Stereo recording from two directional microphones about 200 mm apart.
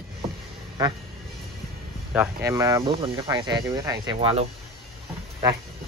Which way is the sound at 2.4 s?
15° right (ahead or behind).